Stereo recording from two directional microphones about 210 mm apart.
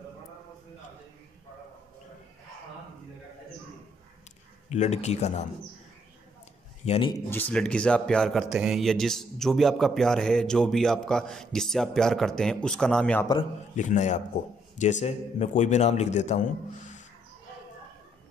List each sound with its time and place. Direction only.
4.6 s a man's voice: 35° left (ahead or behind)
6.9 s speech: 25° left (ahead or behind)
7.2 s speech: 10° left (ahead or behind)
13.7 s a man's voice: 35° left (ahead or behind)